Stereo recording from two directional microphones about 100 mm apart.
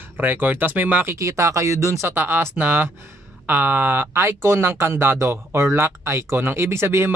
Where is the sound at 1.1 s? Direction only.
30° right (ahead or behind).